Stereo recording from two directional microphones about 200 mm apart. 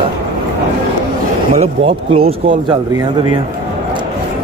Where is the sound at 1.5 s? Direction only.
30° right (ahead or behind).